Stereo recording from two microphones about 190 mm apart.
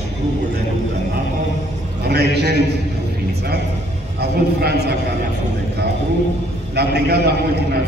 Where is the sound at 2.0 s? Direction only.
60° right (ahead or behind).